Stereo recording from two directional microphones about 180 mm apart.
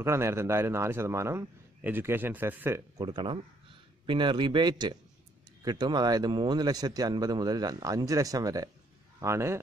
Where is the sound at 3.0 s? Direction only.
25° right (ahead or behind).